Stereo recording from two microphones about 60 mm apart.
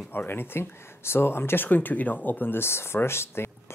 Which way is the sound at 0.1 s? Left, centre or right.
Left.